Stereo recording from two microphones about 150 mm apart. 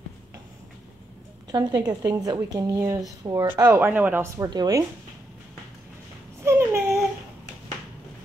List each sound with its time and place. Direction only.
1.5 s a woman's voice: 25° right (ahead or behind)
4.5 s speech: 25° right (ahead or behind)
6.4 s dog: 20° right (ahead or behind)